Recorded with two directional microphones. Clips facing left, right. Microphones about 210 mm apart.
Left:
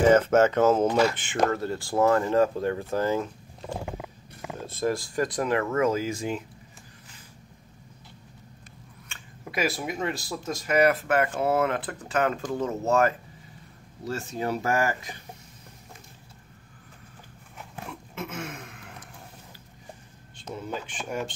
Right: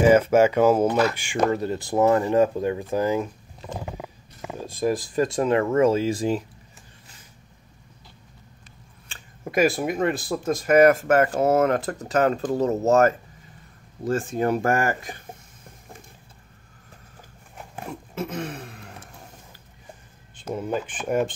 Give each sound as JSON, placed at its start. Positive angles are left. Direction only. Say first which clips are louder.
{"t": 0.0, "sound": "speech", "louder": "right 2 dB", "side_deg": -10}
{"t": 4.6, "sound": "speech", "louder": "right 3 dB", "side_deg": -15}
{"t": 9.1, "sound": "speech", "louder": "right 8 dB", "side_deg": -45}
{"t": 17.6, "sound": "a sound", "louder": "right 4 dB", "side_deg": -35}
{"t": 20.5, "sound": "speech", "louder": "right 7 dB", "side_deg": -55}